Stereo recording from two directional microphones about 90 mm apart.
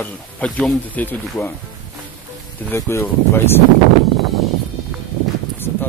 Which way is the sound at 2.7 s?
25° left (ahead or behind).